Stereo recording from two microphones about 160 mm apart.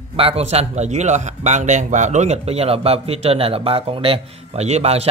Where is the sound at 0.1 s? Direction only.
35° right (ahead or behind).